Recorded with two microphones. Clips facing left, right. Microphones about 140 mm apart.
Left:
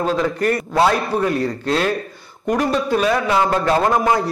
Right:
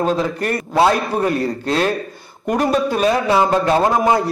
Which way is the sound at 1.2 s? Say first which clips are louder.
Right 1 dB; 35° right (ahead or behind).